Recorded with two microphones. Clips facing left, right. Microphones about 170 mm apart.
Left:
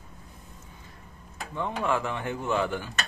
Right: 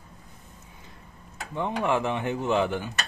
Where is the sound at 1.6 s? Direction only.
20° right (ahead or behind).